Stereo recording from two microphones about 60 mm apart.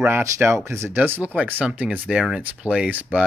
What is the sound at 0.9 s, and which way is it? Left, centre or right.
Speech, right.